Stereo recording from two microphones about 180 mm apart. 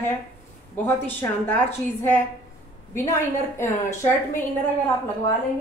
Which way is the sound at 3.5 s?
15° left (ahead or behind).